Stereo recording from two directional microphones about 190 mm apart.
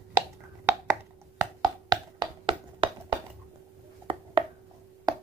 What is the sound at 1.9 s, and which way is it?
Finger snapping, 25° right (ahead or behind).